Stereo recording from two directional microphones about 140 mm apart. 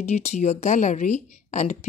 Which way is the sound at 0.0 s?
55° left (ahead or behind).